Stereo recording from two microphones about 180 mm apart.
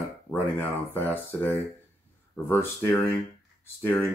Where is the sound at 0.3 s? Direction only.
10° left (ahead or behind).